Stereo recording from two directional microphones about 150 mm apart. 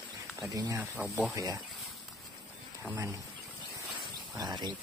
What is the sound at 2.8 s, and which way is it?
Speech, 15° right (ahead or behind).